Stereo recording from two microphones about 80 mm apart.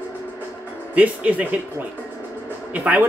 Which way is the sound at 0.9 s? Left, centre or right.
Centre.